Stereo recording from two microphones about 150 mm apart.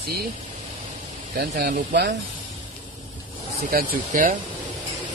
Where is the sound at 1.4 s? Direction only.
80° right.